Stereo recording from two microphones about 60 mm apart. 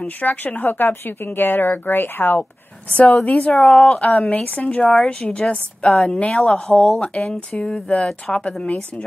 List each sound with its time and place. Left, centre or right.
0.0 s speech: left
2.9 s a woman's voice: left
3.5 s speech: centre
4.3 s a woman's voice: left